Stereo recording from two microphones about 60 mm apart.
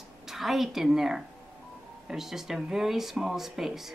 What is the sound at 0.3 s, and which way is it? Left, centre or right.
A woman's voice, centre.